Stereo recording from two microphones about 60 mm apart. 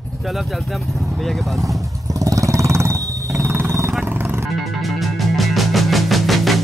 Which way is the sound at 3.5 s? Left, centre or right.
Right.